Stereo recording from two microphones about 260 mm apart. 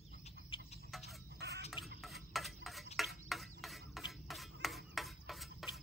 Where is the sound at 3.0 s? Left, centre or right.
Centre.